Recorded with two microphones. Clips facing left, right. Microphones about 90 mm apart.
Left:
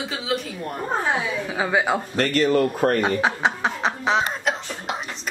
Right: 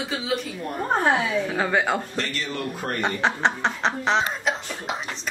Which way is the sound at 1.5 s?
10° left (ahead or behind).